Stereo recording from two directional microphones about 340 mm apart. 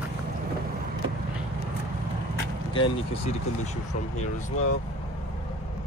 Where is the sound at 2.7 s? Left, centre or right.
Centre.